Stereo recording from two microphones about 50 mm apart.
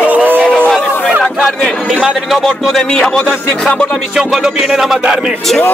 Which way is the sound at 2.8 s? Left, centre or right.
Centre.